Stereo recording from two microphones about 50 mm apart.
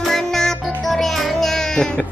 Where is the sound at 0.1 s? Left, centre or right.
Centre.